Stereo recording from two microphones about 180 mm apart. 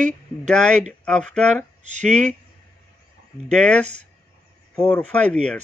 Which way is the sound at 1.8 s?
40° right (ahead or behind).